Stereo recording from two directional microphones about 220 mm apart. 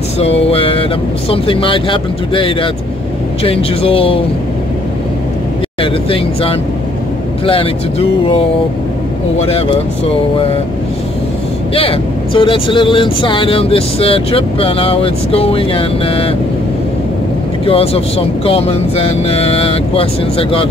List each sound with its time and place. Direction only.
0.2 s vehicle: 25° left (ahead or behind)
1.3 s speech: 25° left (ahead or behind)
5.8 s speech: 25° left (ahead or behind)
9.5 s speech: 25° left (ahead or behind)
11.7 s speech: 25° left (ahead or behind)
17.6 s speech: 25° left (ahead or behind)